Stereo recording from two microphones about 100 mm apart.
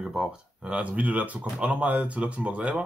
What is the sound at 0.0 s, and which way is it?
Speech, 5° right (ahead or behind).